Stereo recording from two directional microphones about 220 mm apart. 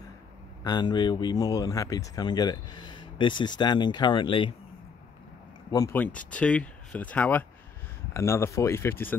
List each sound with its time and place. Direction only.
0.7 s speech: 20° left (ahead or behind)
5.7 s speech: 15° left (ahead or behind)